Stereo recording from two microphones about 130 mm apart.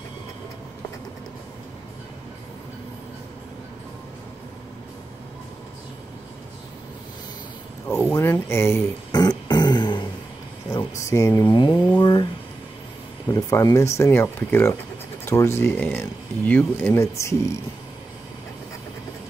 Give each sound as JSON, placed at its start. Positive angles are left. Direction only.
{"t": 8.1, "sound": "speech", "side_deg": 20}
{"t": 9.1, "sound": "a sound", "side_deg": 30}
{"t": 11.0, "sound": "speech", "side_deg": 25}
{"t": 11.4, "sound": "a sound", "side_deg": 35}
{"t": 12.0, "sound": "speech", "side_deg": 35}
{"t": 13.3, "sound": "speech", "side_deg": 25}